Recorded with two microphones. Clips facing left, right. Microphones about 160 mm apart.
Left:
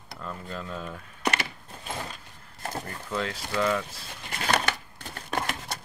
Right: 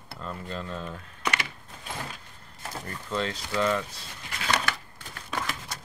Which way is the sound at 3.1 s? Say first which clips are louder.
Right 2 dB; 5° left (ahead or behind).